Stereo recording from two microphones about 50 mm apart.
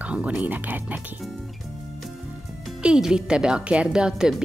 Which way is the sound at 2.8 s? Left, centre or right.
Right.